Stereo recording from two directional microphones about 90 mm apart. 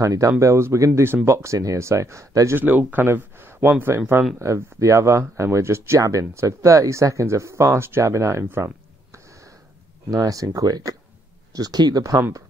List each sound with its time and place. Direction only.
0.0 s speech: 40° right (ahead or behind)
2.6 s speech: 20° right (ahead or behind)
10.1 s speech: 40° right (ahead or behind)